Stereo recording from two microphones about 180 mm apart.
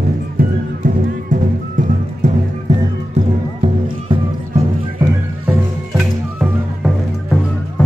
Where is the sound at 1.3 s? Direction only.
45° right (ahead or behind).